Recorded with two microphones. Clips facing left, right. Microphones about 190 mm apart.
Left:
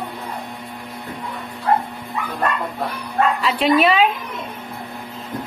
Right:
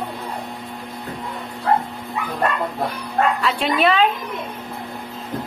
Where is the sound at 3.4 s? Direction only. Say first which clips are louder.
Left 3 dB; centre (ahead or behind).